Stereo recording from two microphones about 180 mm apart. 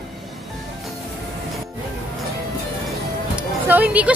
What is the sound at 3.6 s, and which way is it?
Speech, 10° right (ahead or behind).